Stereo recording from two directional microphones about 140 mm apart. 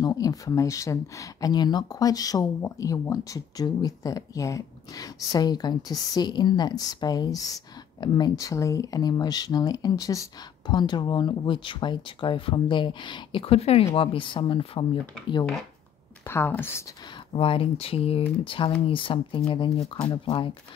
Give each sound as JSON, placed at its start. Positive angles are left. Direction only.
{"t": 0.0, "sound": "speech", "side_deg": 25}
{"t": 16.3, "sound": "speech", "side_deg": 15}
{"t": 17.3, "sound": "speech", "side_deg": 40}